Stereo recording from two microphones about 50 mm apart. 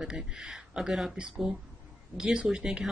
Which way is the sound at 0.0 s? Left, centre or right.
Centre.